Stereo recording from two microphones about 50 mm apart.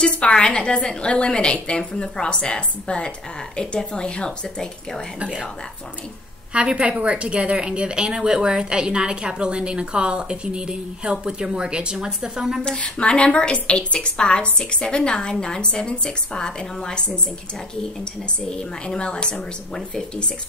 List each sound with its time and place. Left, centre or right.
0.1 s a woman's voice: centre
6.5 s a woman's voice: right
12.6 s a woman's voice: left
18.5 s a woman's voice: centre